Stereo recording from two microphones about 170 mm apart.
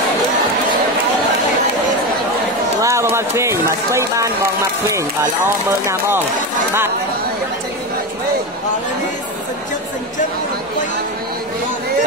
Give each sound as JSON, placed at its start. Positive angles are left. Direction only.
{"t": 2.8, "sound": "run", "side_deg": -15}
{"t": 5.7, "sound": "speech", "side_deg": -15}